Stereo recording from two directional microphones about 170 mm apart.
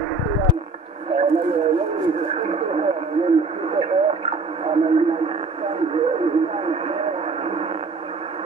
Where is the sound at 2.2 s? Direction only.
35° right (ahead or behind).